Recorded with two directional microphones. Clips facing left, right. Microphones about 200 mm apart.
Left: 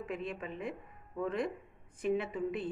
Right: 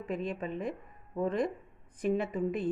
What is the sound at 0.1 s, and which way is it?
A woman's voice, 35° right (ahead or behind).